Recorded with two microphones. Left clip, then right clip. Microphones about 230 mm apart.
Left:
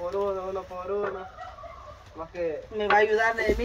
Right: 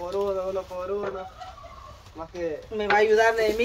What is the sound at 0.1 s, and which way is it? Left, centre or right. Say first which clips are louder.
Speech: right 3 dB; right.